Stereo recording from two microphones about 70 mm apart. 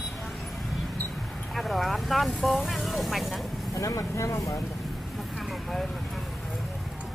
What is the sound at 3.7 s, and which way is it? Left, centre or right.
Speech, left.